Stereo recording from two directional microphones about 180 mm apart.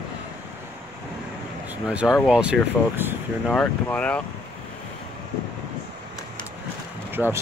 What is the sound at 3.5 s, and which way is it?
Speech, 5° left (ahead or behind).